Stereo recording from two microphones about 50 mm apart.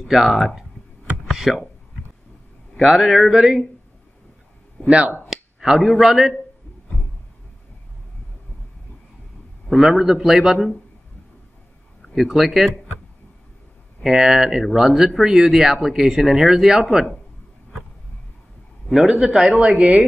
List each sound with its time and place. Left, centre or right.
0.0 s speech: centre
2.8 s speech: centre
4.8 s speech: right
5.3 s speech: centre
9.7 s speech: centre
12.2 s speech: centre
14.0 s speech: centre
18.9 s speech: centre
19.8 s speech: right